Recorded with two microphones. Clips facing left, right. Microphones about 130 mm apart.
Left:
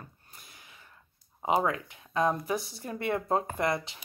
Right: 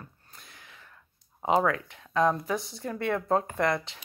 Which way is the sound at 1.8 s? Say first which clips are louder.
Right 3 dB; 5° left (ahead or behind).